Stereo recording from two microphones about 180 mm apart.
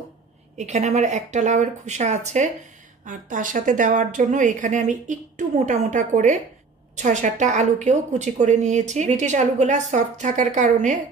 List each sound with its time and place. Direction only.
0.6 s a woman's voice: 40° right (ahead or behind)